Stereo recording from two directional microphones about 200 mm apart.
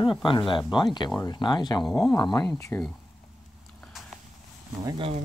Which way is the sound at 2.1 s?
20° left (ahead or behind).